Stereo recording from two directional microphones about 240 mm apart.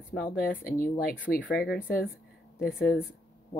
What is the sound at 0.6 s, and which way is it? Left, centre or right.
Speech, left.